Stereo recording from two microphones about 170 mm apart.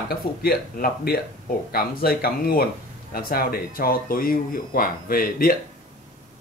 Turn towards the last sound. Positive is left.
turn(degrees=55)  # may be behind; listen again after turning